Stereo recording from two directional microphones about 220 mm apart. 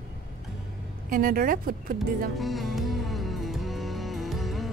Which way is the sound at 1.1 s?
40° right (ahead or behind).